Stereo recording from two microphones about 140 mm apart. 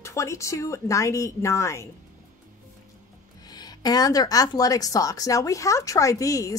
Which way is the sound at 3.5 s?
30° left (ahead or behind).